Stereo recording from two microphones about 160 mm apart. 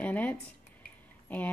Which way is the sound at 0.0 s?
10° left (ahead or behind).